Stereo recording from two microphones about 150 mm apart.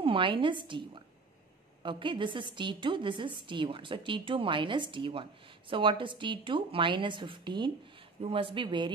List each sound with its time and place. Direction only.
0.0 s a woman's voice: 35° right (ahead or behind)